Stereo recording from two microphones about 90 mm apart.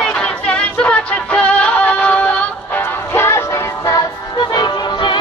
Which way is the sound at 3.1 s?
30° left (ahead or behind).